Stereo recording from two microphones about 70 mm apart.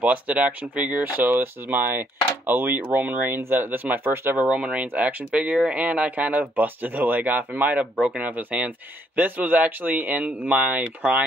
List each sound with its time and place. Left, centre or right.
0.0 s speech: right
4.4 s speech: centre